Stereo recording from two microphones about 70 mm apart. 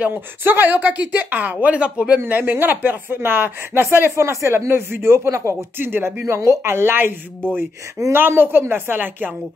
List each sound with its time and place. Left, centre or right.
0.0 s speech: right
2.1 s speech: right
4.1 s speech: right
5.8 s speech: right
6.2 s speech: right